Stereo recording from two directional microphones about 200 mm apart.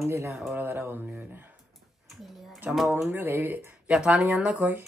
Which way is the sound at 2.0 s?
Centre (ahead or behind).